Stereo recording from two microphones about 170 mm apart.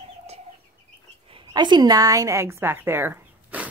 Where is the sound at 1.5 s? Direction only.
25° right (ahead or behind).